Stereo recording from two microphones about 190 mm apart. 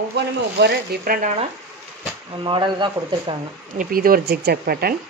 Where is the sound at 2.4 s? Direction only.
25° right (ahead or behind).